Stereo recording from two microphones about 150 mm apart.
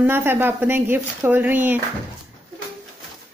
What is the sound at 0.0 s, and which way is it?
A woman's voice, 15° right (ahead or behind).